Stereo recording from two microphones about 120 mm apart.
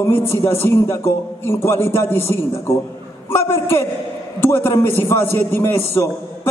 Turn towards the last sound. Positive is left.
turn(degrees=20)  # may be behind; listen again after turning